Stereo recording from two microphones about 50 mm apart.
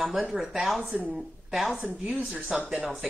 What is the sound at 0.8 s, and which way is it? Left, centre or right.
Speech, right.